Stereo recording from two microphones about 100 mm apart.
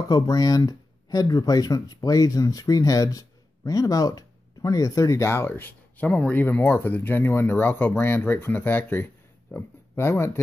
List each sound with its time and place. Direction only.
0.1 s speech: 40° left (ahead or behind)